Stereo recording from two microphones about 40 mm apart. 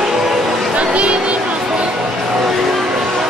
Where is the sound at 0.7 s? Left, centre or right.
Right.